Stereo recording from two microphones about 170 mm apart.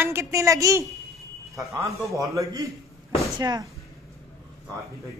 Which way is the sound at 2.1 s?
20° right (ahead or behind).